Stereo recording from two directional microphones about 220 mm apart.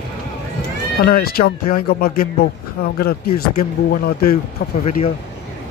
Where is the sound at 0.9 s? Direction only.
45° left (ahead or behind).